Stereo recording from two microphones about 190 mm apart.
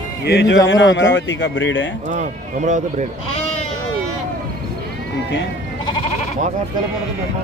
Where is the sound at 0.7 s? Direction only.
75° left (ahead or behind).